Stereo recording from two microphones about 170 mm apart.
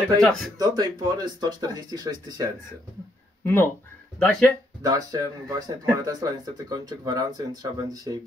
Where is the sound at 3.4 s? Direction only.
15° left (ahead or behind).